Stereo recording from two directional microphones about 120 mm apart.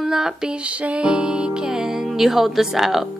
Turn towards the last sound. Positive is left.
turn(degrees=-5)  # may be behind; listen again after turning